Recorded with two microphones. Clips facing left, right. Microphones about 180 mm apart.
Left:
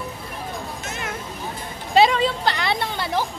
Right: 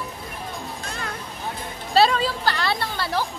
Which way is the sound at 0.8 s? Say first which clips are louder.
Left 1 dB; 20° left (ahead or behind).